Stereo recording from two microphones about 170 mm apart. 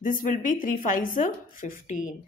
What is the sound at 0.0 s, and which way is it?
A woman's voice, 50° left (ahead or behind).